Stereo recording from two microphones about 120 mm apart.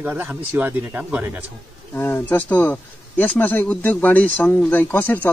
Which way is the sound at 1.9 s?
20° left (ahead or behind).